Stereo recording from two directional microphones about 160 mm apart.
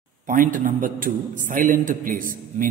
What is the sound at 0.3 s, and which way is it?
A man's voice, 55° right (ahead or behind).